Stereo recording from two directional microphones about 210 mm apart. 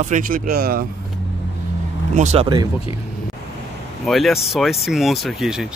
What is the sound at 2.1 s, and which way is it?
Speech, 30° right (ahead or behind).